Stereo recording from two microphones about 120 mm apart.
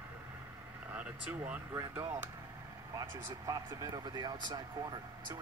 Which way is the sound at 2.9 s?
30° right (ahead or behind).